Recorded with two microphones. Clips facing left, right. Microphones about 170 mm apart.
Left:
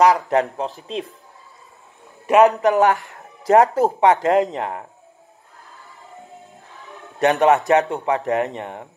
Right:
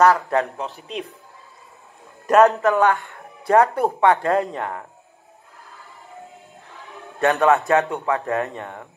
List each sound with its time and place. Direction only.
0.0 s speech: 15° left (ahead or behind)
0.6 s speech: 30° left (ahead or behind)
2.2 s speech: 10° left (ahead or behind)
7.2 s speech: 20° left (ahead or behind)